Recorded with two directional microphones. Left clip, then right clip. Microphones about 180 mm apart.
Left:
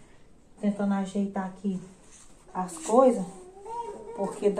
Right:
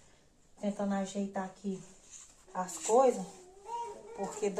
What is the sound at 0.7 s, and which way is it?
Speech, 45° right (ahead or behind).